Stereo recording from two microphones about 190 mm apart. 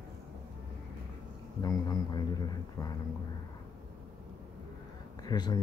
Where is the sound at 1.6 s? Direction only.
20° left (ahead or behind).